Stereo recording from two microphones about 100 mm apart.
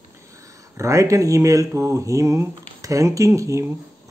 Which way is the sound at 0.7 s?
30° right (ahead or behind).